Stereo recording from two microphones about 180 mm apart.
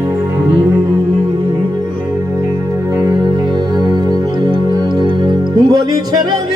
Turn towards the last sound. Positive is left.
turn(degrees=-20)  # may be behind; listen again after turning